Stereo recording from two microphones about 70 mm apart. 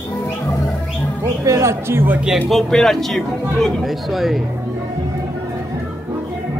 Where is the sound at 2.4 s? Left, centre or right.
Centre.